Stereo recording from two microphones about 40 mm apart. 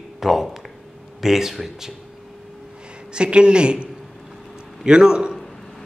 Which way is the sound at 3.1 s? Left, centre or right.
Right.